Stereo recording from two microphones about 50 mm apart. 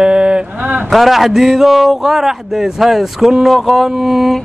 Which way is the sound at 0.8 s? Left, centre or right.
Centre.